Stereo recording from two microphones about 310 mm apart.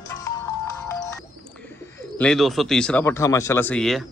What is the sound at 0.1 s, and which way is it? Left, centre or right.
Music, centre.